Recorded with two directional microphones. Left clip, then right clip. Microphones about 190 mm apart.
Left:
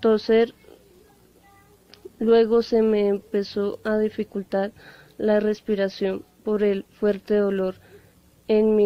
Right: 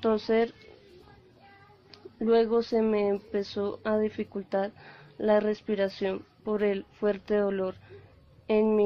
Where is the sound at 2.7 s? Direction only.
55° left (ahead or behind).